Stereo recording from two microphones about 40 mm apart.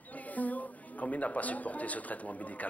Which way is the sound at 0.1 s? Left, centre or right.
Left.